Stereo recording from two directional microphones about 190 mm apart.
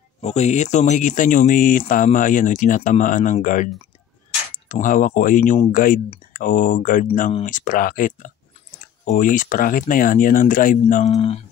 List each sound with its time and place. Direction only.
0.2 s speech: 35° left (ahead or behind)